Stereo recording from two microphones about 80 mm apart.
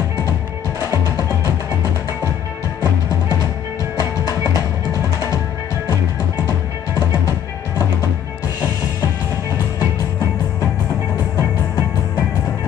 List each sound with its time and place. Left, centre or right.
1.1 s music: left
4.9 s music: left
11.3 s music: left